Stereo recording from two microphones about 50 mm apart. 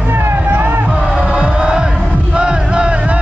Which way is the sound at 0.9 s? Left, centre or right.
Centre.